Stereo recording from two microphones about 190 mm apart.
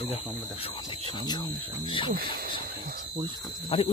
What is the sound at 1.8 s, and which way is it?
Speech, 25° left (ahead or behind).